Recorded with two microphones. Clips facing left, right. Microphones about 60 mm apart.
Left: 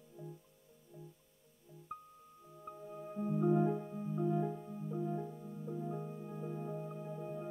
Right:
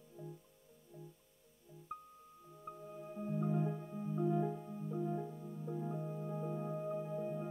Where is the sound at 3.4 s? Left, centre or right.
Left.